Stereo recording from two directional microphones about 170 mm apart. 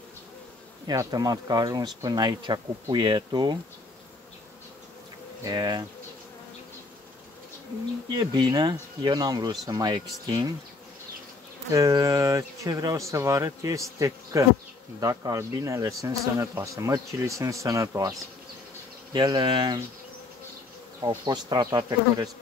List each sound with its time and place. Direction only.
0.8 s speech: 20° right (ahead or behind)
5.4 s speech: 25° right (ahead or behind)
8.1 s speech: 25° right (ahead or behind)
11.7 s speech: 20° right (ahead or behind)
19.1 s speech: 25° right (ahead or behind)
21.0 s speech: 25° right (ahead or behind)